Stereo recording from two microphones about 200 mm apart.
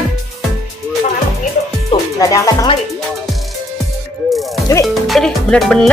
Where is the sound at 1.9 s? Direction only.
20° left (ahead or behind).